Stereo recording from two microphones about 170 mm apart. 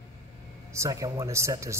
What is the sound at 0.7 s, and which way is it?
Speech, 20° right (ahead or behind).